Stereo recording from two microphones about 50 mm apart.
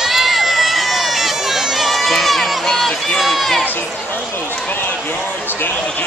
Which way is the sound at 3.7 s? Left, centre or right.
Left.